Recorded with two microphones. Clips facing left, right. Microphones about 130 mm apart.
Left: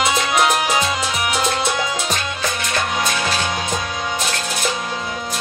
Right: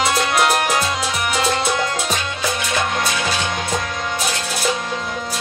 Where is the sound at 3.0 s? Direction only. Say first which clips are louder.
Even; 5° left (ahead or behind).